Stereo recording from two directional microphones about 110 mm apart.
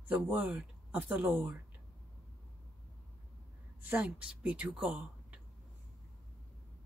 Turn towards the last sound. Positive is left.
turn(degrees=-10)  # may be behind; listen again after turning